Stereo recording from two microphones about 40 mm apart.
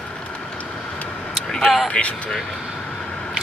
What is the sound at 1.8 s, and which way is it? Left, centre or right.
Speech, left.